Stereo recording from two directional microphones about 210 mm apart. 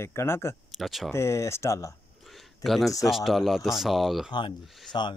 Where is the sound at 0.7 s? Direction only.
Centre (ahead or behind).